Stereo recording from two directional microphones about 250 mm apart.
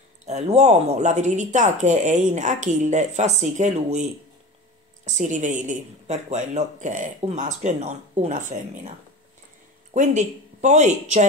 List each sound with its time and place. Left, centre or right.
0.2 s speech: right
9.9 s speech: right